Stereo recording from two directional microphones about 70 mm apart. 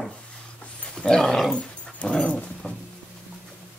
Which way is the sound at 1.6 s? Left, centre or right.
Centre.